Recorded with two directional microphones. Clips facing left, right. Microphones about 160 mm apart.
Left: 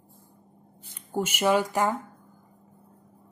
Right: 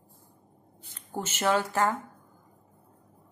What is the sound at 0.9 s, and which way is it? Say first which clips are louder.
Speech: left 6 dB; 10° left (ahead or behind).